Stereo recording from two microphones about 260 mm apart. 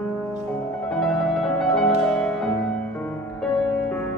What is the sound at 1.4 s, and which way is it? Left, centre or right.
Music, centre.